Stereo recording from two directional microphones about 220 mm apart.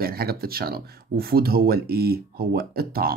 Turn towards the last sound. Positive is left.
turn(degrees=-45)  # may be behind; listen again after turning